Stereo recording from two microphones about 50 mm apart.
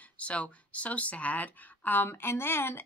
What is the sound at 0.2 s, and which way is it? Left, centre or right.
Speech, left.